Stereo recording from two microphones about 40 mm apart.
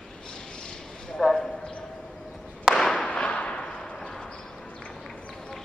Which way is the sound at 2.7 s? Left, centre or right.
Centre.